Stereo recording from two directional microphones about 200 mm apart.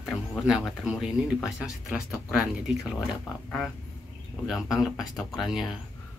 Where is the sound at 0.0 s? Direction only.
Centre (ahead or behind).